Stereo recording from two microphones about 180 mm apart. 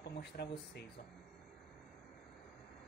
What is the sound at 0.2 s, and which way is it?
Speech, 65° left (ahead or behind).